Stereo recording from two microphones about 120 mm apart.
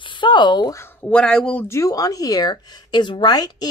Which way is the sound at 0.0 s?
40° left (ahead or behind).